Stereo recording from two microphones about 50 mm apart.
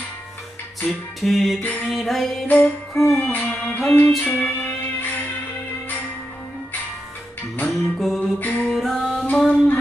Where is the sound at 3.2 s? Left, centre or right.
Left.